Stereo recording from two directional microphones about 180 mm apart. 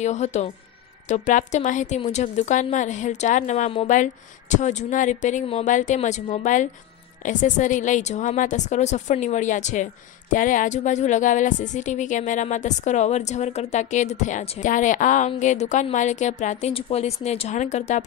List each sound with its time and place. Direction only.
0.0 s a woman's voice: 40° left (ahead or behind)